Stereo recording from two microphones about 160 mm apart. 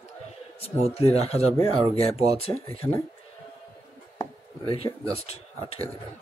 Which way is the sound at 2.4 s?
40° left (ahead or behind).